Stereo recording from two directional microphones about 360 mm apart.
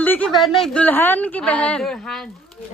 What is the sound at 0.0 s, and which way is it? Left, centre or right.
A woman's voice, centre.